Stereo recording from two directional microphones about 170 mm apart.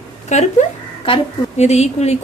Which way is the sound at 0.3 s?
45° left (ahead or behind).